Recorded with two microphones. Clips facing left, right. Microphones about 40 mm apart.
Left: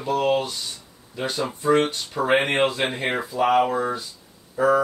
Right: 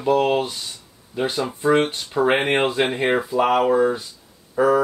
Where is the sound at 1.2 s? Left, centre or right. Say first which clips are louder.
Right 4 dB; right.